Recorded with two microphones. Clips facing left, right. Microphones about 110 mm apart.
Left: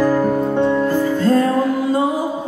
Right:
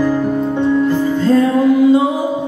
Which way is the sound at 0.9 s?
50° left (ahead or behind).